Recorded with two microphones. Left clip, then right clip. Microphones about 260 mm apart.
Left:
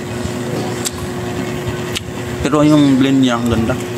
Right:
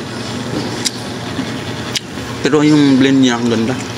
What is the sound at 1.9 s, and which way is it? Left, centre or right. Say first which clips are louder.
Vehicle: right 1 dB; centre.